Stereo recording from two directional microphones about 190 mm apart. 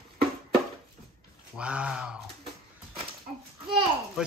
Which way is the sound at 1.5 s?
5° right (ahead or behind).